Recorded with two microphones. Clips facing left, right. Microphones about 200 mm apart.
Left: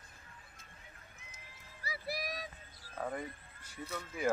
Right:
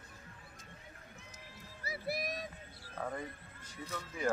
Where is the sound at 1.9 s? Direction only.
50° right (ahead or behind).